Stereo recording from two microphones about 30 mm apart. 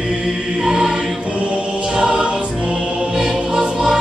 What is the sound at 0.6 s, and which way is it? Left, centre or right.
Choir, right.